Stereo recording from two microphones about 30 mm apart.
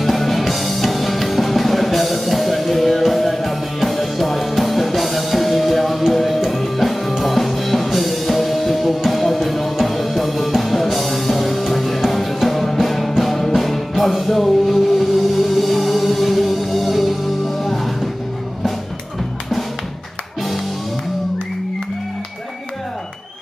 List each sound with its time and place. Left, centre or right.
0.0 s music: centre